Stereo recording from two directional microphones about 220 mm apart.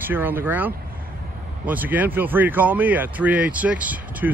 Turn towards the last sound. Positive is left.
turn(degrees=-5)  # may be behind; listen again after turning